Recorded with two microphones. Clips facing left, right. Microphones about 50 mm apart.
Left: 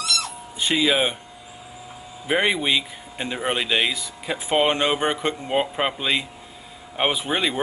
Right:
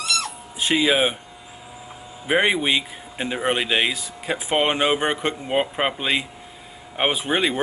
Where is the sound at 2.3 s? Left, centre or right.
Centre.